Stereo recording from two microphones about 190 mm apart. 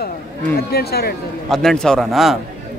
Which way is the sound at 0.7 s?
55° left (ahead or behind).